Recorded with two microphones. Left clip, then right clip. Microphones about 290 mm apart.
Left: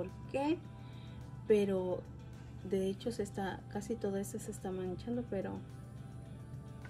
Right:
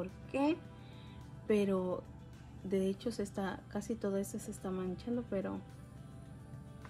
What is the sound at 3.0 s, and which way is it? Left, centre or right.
A woman's voice, centre.